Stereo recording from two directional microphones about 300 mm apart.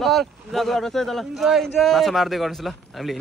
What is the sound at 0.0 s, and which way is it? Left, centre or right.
Speech, centre.